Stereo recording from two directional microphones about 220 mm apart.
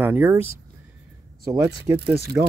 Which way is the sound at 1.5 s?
10° right (ahead or behind).